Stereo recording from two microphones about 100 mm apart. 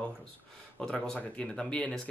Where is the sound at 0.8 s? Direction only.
10° left (ahead or behind).